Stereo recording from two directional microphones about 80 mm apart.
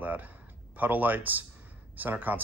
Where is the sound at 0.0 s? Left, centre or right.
Right.